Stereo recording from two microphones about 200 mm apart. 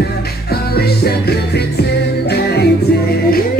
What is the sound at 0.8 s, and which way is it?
Music, 50° left (ahead or behind).